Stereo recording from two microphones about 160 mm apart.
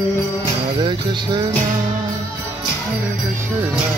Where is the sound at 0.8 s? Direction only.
30° right (ahead or behind).